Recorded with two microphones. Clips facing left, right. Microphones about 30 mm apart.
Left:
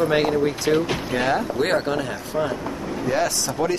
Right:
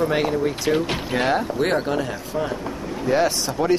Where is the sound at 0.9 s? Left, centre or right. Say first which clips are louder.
Even; centre.